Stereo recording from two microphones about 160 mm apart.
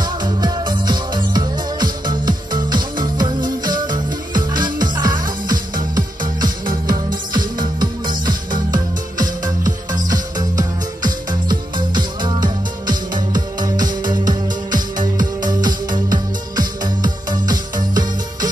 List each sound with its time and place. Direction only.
0.0 s music: 25° right (ahead or behind)